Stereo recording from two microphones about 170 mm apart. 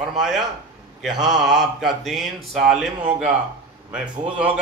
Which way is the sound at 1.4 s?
Centre (ahead or behind).